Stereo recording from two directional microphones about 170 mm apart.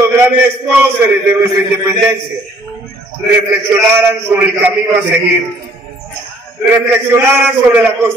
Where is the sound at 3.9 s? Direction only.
10° right (ahead or behind).